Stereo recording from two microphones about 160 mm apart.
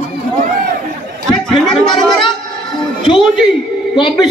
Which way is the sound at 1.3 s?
Centre (ahead or behind).